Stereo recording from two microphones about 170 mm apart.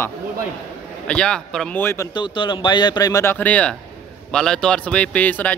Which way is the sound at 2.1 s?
25° left (ahead or behind).